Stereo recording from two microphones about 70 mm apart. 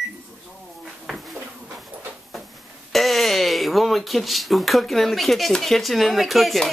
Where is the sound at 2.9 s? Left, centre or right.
Centre.